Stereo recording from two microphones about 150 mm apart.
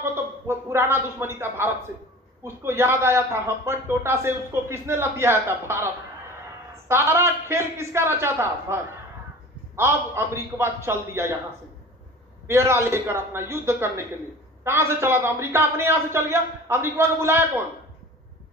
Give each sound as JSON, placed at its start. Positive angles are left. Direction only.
{"t": 0.0, "sound": "a man's voice", "side_deg": -15}
{"t": 12.4, "sound": "a man's voice", "side_deg": -15}